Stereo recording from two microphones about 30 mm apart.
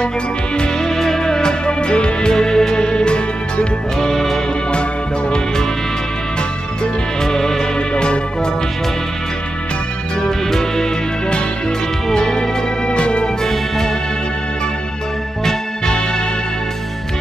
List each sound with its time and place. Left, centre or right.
0.6 s music: centre
1.7 s music: left
2.3 s music: centre
4.0 s music: centre
6.8 s music: left
7.9 s music: left
10.2 s music: centre
12.1 s music: left
12.8 s music: left
13.4 s music: centre